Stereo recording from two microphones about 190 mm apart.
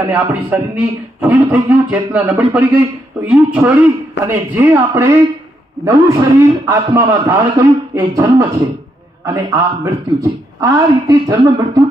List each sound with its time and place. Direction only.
0.1 s a man's voice: 10° right (ahead or behind)